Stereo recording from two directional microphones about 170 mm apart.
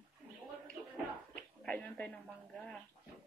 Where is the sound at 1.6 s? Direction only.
5° left (ahead or behind).